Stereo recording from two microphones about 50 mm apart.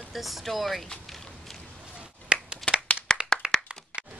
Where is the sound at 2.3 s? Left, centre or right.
Centre.